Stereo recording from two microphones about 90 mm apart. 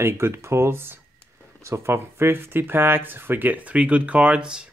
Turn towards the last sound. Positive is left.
turn(degrees=-10)  # may be behind; listen again after turning